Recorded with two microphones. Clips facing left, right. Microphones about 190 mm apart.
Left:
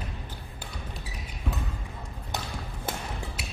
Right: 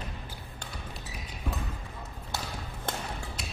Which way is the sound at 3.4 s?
5° left (ahead or behind).